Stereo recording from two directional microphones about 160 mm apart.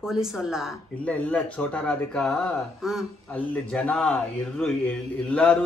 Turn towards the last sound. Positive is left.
turn(degrees=5)  # may be behind; listen again after turning